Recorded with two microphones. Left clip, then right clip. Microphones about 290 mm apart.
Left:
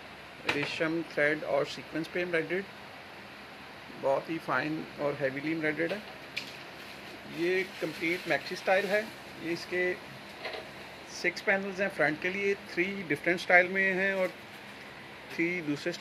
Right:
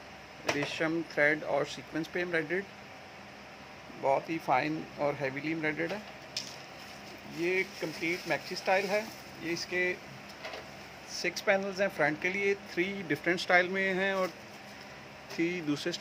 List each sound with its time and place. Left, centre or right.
0.7 s speech: right
4.1 s speech: right
7.4 s speech: right
11.1 s speech: right
15.3 s speech: right